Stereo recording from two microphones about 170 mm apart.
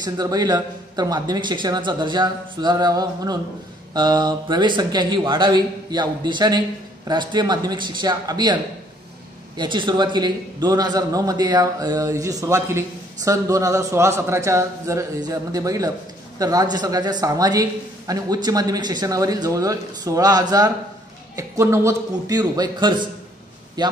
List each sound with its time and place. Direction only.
0.0 s a man's voice: 25° right (ahead or behind)
9.6 s a man's voice: 25° right (ahead or behind)